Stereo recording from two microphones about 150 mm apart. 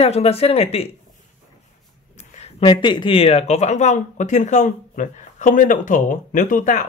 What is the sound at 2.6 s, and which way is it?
Speech, 30° left (ahead or behind).